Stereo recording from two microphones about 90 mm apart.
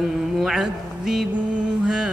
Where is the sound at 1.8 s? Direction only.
5° right (ahead or behind).